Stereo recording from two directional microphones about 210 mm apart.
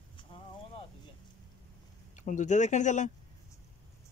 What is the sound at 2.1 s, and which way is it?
Speech, 35° left (ahead or behind).